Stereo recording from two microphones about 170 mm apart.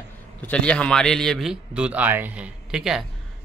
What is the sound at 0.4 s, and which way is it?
A man's voice, 5° left (ahead or behind).